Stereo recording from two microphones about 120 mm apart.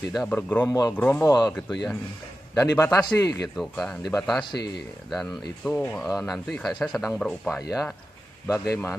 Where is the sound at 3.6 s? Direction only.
Centre (ahead or behind).